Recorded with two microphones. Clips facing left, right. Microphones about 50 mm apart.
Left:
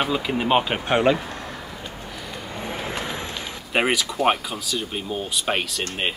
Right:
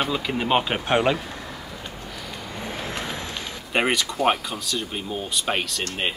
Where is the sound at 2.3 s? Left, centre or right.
Centre.